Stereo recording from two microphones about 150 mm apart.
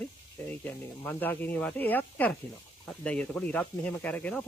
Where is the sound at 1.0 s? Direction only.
10° left (ahead or behind).